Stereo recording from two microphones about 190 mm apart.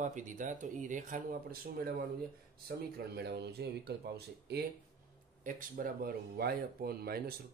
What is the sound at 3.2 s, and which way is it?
Speech, 60° right (ahead or behind).